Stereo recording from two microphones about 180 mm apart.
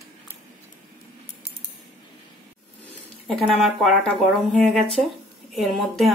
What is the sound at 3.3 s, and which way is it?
A woman's voice, centre (ahead or behind).